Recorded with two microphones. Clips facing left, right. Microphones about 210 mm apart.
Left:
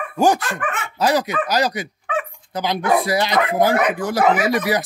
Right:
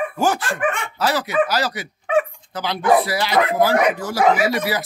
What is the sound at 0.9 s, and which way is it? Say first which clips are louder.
Speech: left 3 dB; 15° left (ahead or behind).